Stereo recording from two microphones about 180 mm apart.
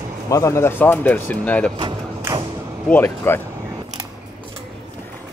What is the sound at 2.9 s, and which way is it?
Speech, 10° left (ahead or behind).